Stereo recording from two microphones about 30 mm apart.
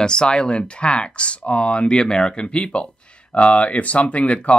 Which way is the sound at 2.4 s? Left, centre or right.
Left.